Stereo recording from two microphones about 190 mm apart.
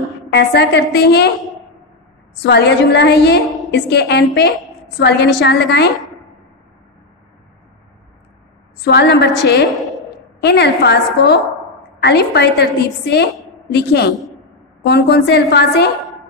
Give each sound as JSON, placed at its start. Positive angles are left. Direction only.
{"t": 0.3, "sound": "a woman's voice", "side_deg": 60}
{"t": 2.4, "sound": "a woman's voice", "side_deg": 60}
{"t": 8.8, "sound": "a woman's voice", "side_deg": 60}